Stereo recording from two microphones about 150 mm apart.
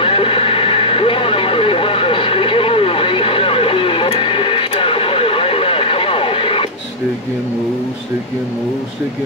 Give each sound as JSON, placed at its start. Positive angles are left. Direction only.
{"t": 0.0, "sound": "vehicle", "side_deg": 35}